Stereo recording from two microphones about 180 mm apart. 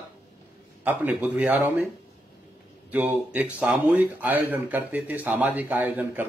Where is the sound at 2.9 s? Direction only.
10° right (ahead or behind).